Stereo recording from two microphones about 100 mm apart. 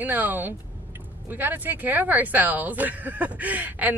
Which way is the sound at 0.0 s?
20° right (ahead or behind).